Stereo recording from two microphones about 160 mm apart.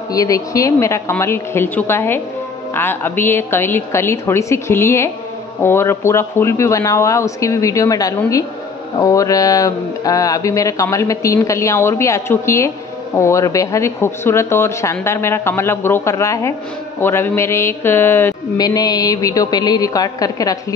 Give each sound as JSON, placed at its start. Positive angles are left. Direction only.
{"t": 0.1, "sound": "speech", "side_deg": 20}